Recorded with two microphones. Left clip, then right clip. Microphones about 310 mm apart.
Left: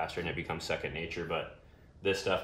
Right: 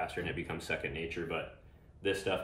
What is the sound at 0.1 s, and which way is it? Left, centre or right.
Speech, centre.